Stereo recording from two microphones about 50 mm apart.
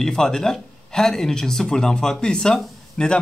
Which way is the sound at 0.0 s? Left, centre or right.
Centre.